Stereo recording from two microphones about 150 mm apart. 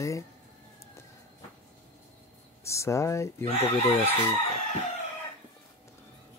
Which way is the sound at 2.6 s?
20° left (ahead or behind).